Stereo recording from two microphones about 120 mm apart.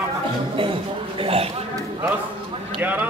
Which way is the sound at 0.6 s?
45° right (ahead or behind).